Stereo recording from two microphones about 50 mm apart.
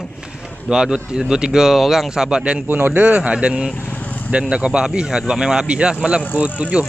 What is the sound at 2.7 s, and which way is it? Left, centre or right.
Speech, right.